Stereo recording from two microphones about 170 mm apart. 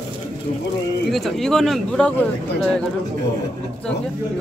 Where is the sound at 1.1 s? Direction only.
Centre (ahead or behind).